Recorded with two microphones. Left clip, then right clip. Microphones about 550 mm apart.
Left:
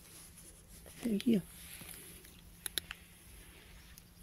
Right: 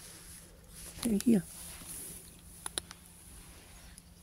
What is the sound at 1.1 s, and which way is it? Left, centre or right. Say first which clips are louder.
Speech: right 4 dB; left.